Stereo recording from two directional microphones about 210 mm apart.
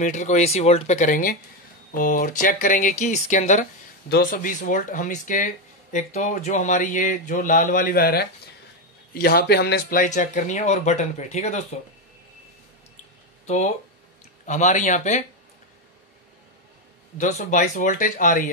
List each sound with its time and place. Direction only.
0.0 s speech: 35° left (ahead or behind)
14.4 s speech: 35° left (ahead or behind)
17.2 s speech: 35° left (ahead or behind)